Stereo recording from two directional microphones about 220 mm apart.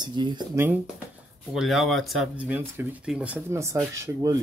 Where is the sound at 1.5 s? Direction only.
Centre (ahead or behind).